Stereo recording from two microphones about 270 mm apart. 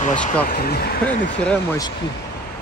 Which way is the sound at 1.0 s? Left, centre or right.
Centre.